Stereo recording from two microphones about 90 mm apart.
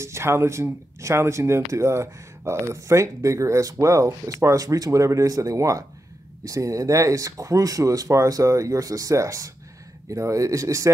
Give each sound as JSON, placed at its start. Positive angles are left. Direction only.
{"t": 0.0, "sound": "speech", "side_deg": -30}